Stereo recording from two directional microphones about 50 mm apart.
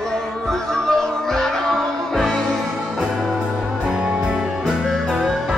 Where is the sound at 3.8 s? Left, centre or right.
Centre.